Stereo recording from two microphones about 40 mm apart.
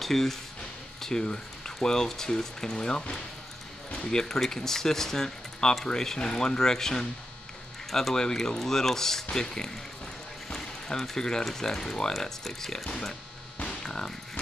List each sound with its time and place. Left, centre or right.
0.0 s speech: centre
1.0 s speech: centre
13.7 s music: centre